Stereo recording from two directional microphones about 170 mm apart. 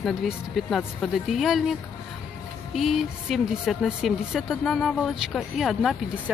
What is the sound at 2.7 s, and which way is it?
A woman's voice, centre (ahead or behind).